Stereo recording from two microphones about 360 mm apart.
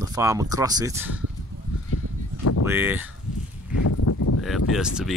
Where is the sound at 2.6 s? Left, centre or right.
Centre.